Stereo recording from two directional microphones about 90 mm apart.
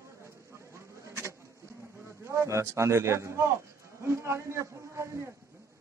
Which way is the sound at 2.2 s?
30° right (ahead or behind).